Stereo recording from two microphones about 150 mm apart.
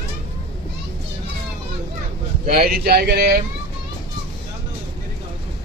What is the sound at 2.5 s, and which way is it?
Speech, 90° right.